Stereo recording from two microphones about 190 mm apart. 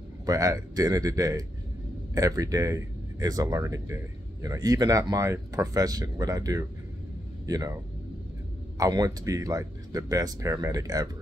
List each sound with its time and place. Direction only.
0.3 s speech: 20° right (ahead or behind)